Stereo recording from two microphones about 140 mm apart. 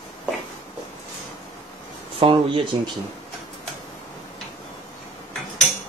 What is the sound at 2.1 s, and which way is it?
Speech, 35° right (ahead or behind).